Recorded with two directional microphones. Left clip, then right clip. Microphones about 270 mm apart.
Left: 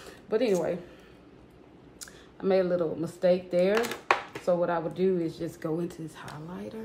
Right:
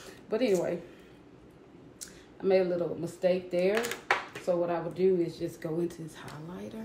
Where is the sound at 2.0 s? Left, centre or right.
Centre.